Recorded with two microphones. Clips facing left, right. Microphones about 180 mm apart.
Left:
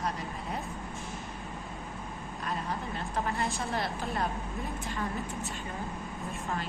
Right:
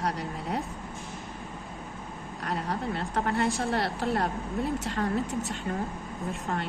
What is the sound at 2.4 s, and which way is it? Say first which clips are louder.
A woman's voice: right 4 dB; 70° right (ahead or behind).